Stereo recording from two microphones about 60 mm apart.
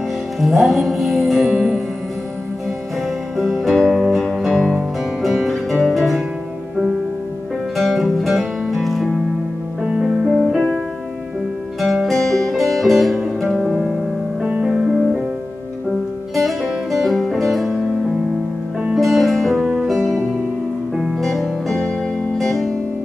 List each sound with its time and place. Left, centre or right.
0.4 s music: centre
3.3 s music: centre
7.7 s music: centre
9.8 s music: centre
10.2 s music: centre
11.8 s music: centre
14.4 s music: centre
16.3 s music: centre
18.9 s music: centre
21.0 s music: centre